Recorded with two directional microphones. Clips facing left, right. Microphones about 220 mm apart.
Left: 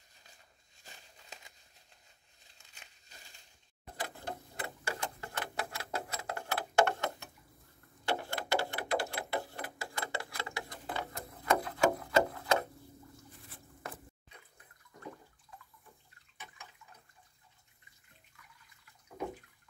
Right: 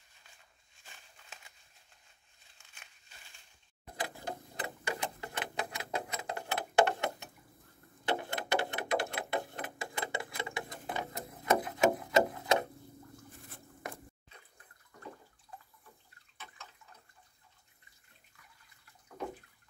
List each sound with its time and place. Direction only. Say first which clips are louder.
0.8 s crumpling: left 2 dB; 40° left (ahead or behind)
3.1 s crushing: left 5 dB; 40° left (ahead or behind)
4.0 s clock: right 2 dB; 15° right (ahead or behind)
8.0 s a sound: right 1 dB; 20° right (ahead or behind)